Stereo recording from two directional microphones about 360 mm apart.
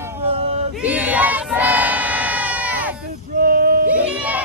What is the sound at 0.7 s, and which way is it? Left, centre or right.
Crowd, centre.